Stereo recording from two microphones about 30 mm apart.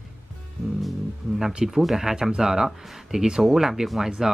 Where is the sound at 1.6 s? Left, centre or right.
Centre.